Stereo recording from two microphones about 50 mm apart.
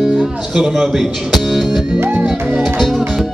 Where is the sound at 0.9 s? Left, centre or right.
Centre.